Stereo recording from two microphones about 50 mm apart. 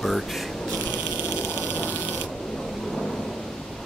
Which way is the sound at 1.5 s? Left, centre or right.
Left.